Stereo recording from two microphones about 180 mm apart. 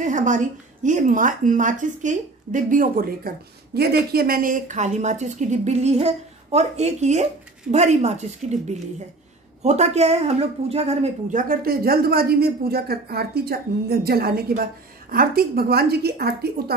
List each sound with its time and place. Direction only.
0.0 s a woman's voice: 45° right (ahead or behind); by 16.7 s 60° right (ahead or behind)